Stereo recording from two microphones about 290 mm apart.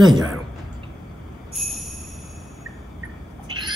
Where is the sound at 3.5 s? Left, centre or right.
Centre.